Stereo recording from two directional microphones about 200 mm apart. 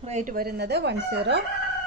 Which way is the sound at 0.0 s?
35° right (ahead or behind).